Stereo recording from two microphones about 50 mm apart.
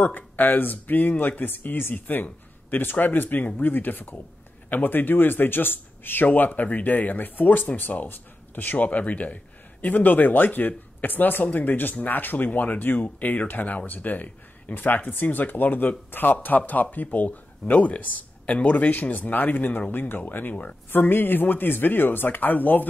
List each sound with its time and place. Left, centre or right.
0.0 s speech: left